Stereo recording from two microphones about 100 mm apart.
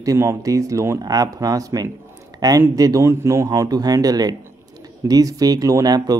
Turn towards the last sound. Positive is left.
turn(degrees=-40)  # may be behind; listen again after turning